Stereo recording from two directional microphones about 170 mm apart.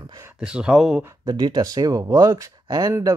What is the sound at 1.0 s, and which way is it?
Speech, 25° right (ahead or behind).